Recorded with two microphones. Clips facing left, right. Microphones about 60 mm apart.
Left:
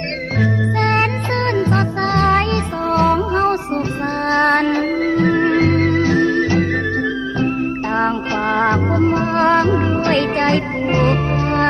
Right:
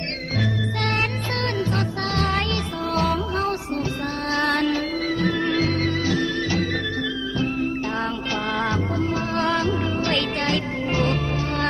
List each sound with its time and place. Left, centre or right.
0.4 s music: left